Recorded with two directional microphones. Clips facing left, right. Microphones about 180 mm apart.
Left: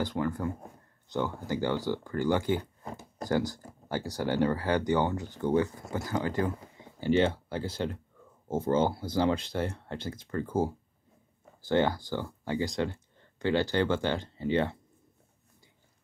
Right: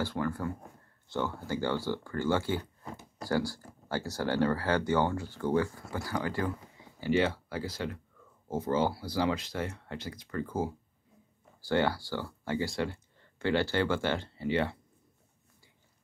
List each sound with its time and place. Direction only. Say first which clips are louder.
0.0 s speech: left 2 dB; 20° left (ahead or behind)
2.8 s a sound: left 3 dB; 45° left (ahead or behind)
3.3 s speech: left 2 dB; 20° left (ahead or behind)
11.6 s speech: left 2 dB; 20° left (ahead or behind)